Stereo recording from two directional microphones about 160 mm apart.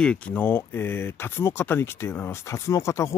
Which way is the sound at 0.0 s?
5° left (ahead or behind).